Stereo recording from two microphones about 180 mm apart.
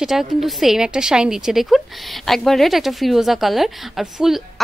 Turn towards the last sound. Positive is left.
turn(degrees=0)  # may be behind; listen again after turning